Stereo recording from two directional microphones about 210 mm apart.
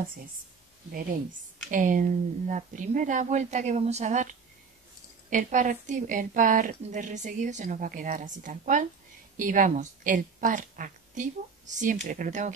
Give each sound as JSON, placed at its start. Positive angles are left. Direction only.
{"t": 1.7, "sound": "a woman's voice", "side_deg": -40}